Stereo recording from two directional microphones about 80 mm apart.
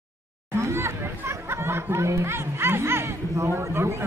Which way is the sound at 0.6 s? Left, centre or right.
Right.